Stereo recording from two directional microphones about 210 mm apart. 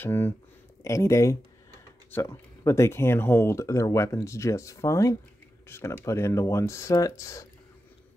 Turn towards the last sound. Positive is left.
turn(degrees=15)  # may be behind; listen again after turning